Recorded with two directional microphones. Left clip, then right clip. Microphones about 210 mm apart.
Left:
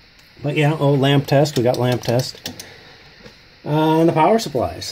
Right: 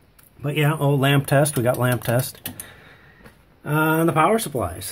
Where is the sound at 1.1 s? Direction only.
15° right (ahead or behind).